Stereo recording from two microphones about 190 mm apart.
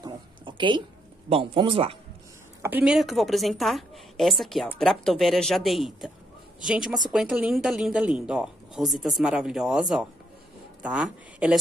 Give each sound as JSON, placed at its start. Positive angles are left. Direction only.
{"t": 0.0, "sound": "a sound", "side_deg": -25}
{"t": 1.3, "sound": "speech", "side_deg": -30}
{"t": 2.6, "sound": "a man's voice", "side_deg": -5}